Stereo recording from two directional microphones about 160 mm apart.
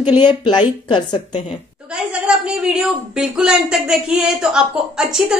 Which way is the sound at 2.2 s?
5° right (ahead or behind).